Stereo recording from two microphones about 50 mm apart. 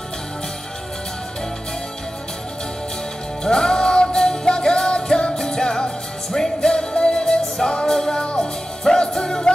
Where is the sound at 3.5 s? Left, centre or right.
Centre.